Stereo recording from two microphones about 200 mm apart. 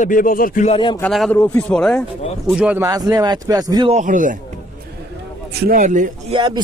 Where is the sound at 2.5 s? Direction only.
5° right (ahead or behind).